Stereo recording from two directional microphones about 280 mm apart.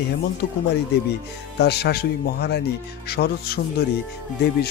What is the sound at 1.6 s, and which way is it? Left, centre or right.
Speech, left.